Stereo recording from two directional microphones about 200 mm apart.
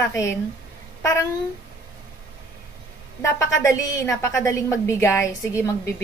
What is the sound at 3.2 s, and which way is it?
A woman's voice, 15° left (ahead or behind).